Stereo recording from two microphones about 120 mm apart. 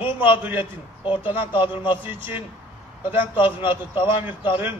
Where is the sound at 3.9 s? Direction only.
45° left (ahead or behind).